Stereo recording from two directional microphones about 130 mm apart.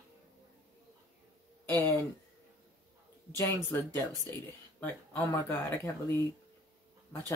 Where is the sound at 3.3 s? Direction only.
15° left (ahead or behind).